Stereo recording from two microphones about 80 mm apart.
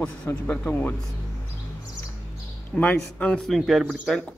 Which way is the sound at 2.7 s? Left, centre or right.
Centre.